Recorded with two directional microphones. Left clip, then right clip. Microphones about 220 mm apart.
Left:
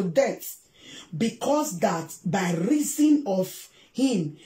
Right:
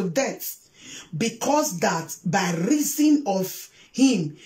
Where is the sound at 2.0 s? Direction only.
10° right (ahead or behind).